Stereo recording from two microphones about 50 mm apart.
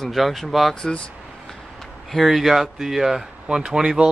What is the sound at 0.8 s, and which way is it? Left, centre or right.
Speech, centre.